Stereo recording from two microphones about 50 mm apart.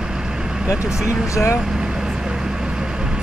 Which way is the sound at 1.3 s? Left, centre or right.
Left.